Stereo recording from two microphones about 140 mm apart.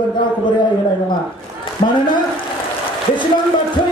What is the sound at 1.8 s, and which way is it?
Speech, 40° left (ahead or behind).